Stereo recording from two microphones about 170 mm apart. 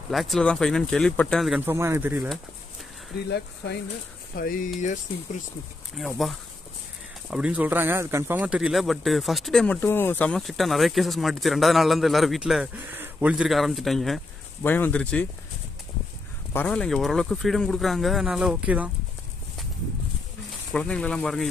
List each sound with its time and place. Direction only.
0.1 s speech: centre (ahead or behind)
1.7 s speech: 15° right (ahead or behind)
3.3 s speech: 75° left (ahead or behind)
4.4 s speech: 55° left (ahead or behind)
5.9 s speech: centre (ahead or behind)
16.5 s speech: 5° left (ahead or behind)
20.7 s speech: 5° left (ahead or behind)